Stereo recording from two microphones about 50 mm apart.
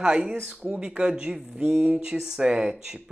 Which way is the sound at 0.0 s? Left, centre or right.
Centre.